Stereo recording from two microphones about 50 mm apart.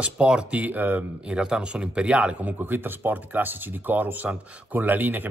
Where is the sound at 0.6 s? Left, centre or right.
Right.